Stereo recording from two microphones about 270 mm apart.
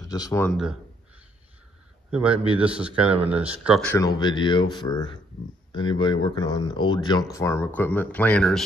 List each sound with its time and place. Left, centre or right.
0.1 s a man's voice: centre
2.0 s a man's voice: centre